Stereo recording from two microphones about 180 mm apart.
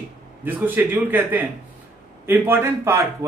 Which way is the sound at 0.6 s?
10° right (ahead or behind).